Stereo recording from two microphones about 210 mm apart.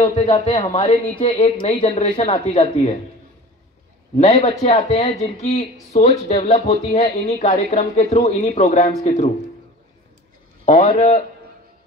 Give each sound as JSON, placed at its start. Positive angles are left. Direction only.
{"t": 0.0, "sound": "a man's voice", "side_deg": 30}
{"t": 4.2, "sound": "speech", "side_deg": 30}
{"t": 10.6, "sound": "speech", "side_deg": 35}